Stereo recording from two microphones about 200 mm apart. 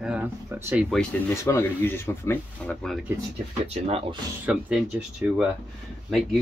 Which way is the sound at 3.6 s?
30° right (ahead or behind).